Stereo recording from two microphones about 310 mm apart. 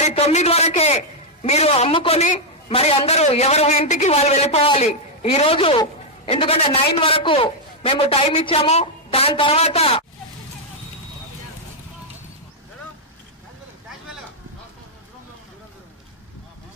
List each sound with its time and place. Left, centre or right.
0.0 s a man's voice: left